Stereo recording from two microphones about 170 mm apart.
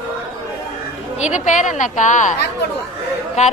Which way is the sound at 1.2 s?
45° left (ahead or behind).